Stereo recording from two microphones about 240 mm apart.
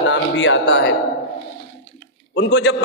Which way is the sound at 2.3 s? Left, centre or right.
Left.